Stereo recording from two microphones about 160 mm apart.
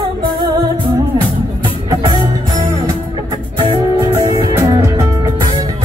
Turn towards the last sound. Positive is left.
turn(degrees=-25)  # may be behind; listen again after turning